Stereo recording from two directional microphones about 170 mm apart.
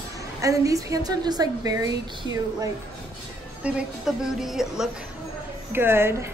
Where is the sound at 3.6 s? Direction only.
5° right (ahead or behind).